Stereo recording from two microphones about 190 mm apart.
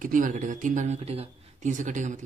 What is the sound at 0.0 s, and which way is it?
Speech, 45° right (ahead or behind).